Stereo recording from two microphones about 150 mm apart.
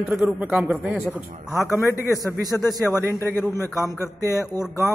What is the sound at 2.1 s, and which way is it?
Speech, 25° right (ahead or behind).